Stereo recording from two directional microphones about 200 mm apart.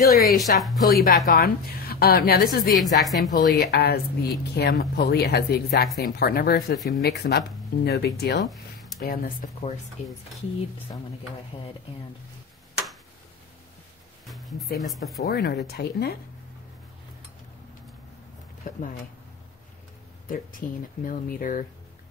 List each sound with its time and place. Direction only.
0.1 s a sound: 50° left (ahead or behind)
0.4 s speech: centre (ahead or behind)
1.0 s speech: 50° left (ahead or behind)
2.8 s speech: centre (ahead or behind)
3.2 s speech: 50° left (ahead or behind)
8.5 s a sound: centre (ahead or behind)
9.0 s speech: 45° left (ahead or behind)
14.2 s speech: centre (ahead or behind)
15.2 s speech: 50° left (ahead or behind)
18.6 s speech: 40° left (ahead or behind)
20.2 s speech: 45° left (ahead or behind)